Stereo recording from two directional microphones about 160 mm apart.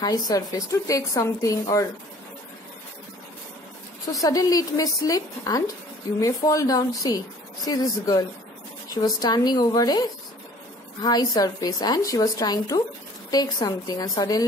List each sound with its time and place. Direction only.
0.0 s speech: 25° left (ahead or behind)
4.1 s speech: 20° left (ahead or behind)